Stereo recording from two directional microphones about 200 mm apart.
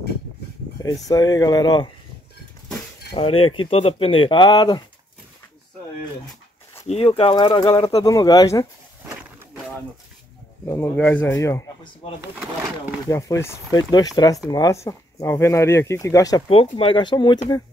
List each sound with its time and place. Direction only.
1.0 s speech: 20° left (ahead or behind)
3.2 s speech: 30° left (ahead or behind)
6.9 s speech: 30° left (ahead or behind)
10.7 s speech: 10° left (ahead or behind)
13.1 s speech: 15° left (ahead or behind)